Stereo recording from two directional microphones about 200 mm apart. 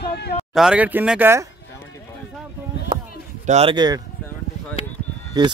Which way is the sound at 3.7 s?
20° right (ahead or behind).